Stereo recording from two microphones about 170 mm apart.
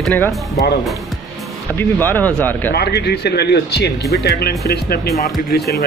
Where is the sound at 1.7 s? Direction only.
10° left (ahead or behind).